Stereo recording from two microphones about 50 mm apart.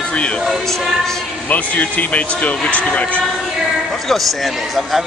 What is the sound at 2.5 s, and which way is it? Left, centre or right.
Speech, centre.